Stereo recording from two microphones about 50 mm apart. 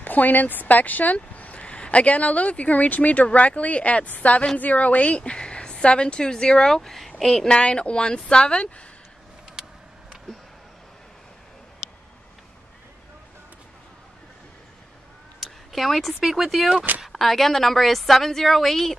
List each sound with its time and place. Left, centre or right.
0.0 s speech: left; by 7.5 s centre
7.5 s speech: left
15.4 s a woman's voice: centre